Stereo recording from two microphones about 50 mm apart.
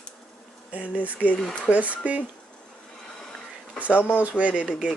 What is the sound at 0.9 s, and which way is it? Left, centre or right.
Speech, right.